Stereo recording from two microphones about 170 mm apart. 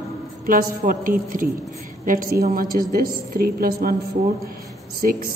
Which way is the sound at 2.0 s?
55° right (ahead or behind).